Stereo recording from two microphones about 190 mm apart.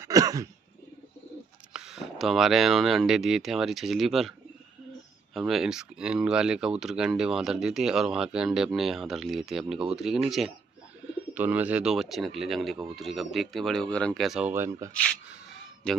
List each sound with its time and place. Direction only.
0.0 s cough: 20° right (ahead or behind)
1.7 s speech: 5° right (ahead or behind)
14.5 s speech: 15° right (ahead or behind)
15.8 s speech: 5° left (ahead or behind)